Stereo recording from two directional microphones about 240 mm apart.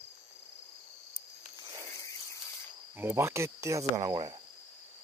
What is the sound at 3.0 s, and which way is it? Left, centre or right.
Cricket, centre.